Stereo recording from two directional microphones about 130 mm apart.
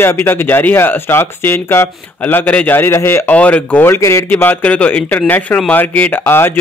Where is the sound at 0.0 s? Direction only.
15° left (ahead or behind).